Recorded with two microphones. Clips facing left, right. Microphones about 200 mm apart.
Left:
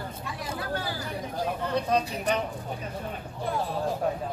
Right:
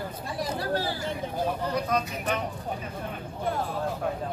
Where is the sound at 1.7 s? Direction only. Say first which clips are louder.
Left 4 dB; 30° left (ahead or behind).